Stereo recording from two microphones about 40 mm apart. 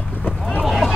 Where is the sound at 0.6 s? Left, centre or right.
Centre.